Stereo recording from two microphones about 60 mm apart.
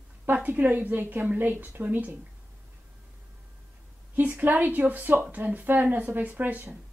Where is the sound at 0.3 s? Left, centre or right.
Right.